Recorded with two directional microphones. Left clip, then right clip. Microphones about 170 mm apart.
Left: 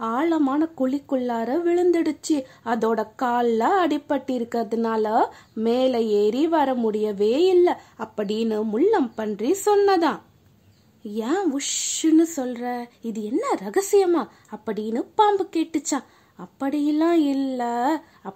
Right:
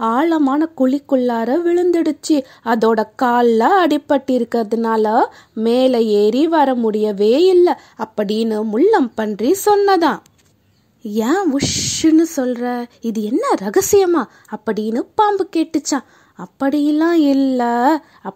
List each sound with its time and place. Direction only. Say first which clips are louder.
0.0 s a woman's voice: right 7 dB; 35° right (ahead or behind)